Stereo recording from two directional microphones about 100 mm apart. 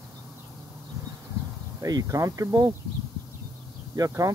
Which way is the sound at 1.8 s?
40° right (ahead or behind).